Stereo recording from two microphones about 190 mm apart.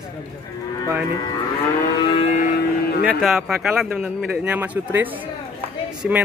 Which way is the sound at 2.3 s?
50° left (ahead or behind).